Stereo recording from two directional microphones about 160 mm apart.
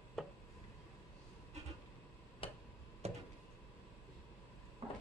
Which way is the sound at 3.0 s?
40° right (ahead or behind).